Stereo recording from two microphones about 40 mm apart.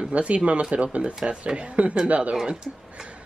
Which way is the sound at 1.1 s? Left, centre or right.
Centre.